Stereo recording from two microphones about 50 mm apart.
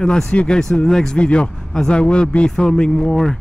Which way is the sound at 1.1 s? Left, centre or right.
Left.